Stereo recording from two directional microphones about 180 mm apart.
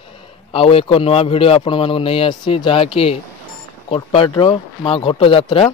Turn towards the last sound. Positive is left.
turn(degrees=30)  # may be behind; listen again after turning